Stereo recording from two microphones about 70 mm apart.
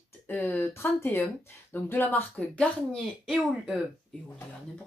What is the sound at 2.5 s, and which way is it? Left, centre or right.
Speech, centre.